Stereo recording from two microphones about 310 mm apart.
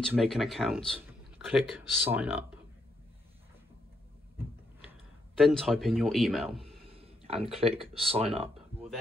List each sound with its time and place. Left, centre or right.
0.0 s a man's voice: centre
5.4 s a man's voice: centre
6.9 s speech: centre